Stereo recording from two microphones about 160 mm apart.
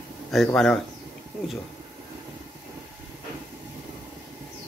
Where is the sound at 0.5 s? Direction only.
5° left (ahead or behind).